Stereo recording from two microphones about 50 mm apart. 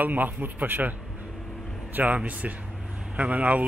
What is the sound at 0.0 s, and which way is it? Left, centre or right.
Speech, right.